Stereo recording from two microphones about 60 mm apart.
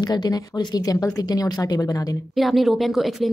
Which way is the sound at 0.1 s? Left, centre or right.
Left.